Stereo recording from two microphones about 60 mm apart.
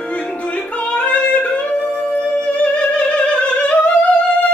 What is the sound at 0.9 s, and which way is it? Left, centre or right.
Music, left.